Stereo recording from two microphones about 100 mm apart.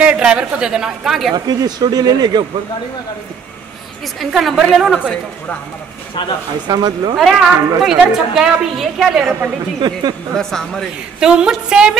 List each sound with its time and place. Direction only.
0.0 s a woman's voice: 10° right (ahead or behind)
1.3 s speech: 40° right (ahead or behind)
4.2 s a woman's voice: centre (ahead or behind)
6.7 s speech: 45° right (ahead or behind)
7.2 s a woman's voice: centre (ahead or behind)
9.8 s speech: 50° right (ahead or behind)
10.3 s a woman's voice: 5° left (ahead or behind)
11.1 s a woman's voice: 10° right (ahead or behind)